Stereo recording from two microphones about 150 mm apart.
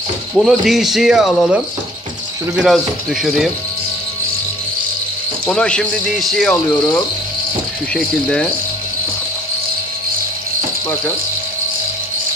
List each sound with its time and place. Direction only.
0.3 s speech: centre (ahead or behind)
5.5 s speech: 5° left (ahead or behind)
6.7 s speech: 25° left (ahead or behind)
7.9 s speech: 5° left (ahead or behind)